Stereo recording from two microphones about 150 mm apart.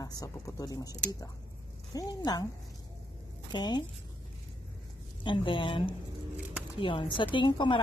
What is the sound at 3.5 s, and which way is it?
Speech, 30° left (ahead or behind).